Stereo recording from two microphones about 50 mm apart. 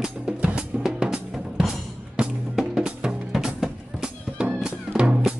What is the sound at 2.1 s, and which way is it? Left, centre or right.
Music, centre.